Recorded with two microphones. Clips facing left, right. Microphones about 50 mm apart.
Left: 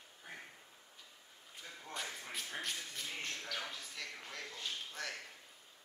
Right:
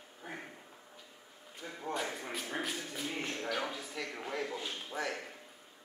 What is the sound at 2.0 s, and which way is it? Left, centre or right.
Speech, right.